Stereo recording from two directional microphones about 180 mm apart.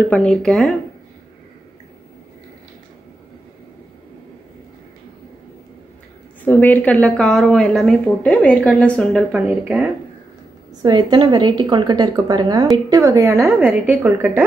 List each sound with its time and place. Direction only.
0.1 s speech: 5° left (ahead or behind)
6.4 s speech: 10° left (ahead or behind)
9.3 s a woman's voice: 5° right (ahead or behind)
10.8 s a woman's voice: 25° right (ahead or behind)